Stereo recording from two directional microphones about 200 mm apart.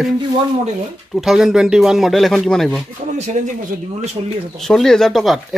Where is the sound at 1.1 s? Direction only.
Centre (ahead or behind).